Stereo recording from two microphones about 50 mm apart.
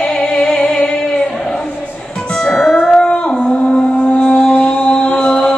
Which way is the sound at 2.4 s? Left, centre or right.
Centre.